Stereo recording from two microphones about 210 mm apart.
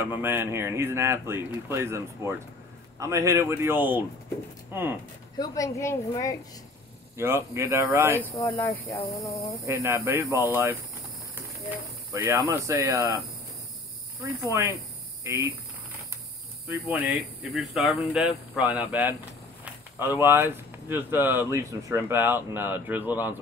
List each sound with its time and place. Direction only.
0.0 s speech: 10° right (ahead or behind)
5.4 s a woman's voice: 15° left (ahead or behind)
7.2 s speech: 15° right (ahead or behind)
8.2 s a woman's voice: 10° left (ahead or behind)
9.7 s speech: 10° right (ahead or behind)
12.1 s speech: 15° right (ahead or behind)
14.2 s speech: 15° right (ahead or behind)
16.6 s speech: 10° right (ahead or behind)